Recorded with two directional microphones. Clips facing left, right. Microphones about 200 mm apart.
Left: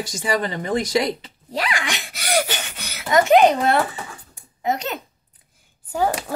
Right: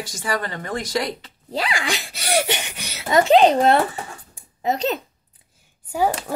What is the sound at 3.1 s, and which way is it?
Speech, 30° right (ahead or behind).